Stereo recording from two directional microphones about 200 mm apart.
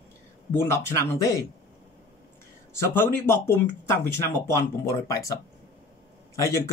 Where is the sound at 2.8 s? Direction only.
10° left (ahead or behind).